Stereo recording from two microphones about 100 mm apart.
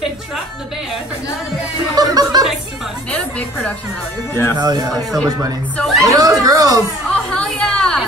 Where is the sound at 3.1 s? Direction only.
15° left (ahead or behind).